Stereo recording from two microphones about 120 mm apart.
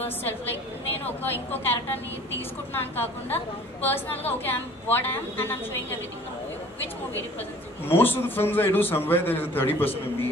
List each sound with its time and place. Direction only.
0.0 s a man's voice: 15° left (ahead or behind)
7.8 s a man's voice: 15° left (ahead or behind)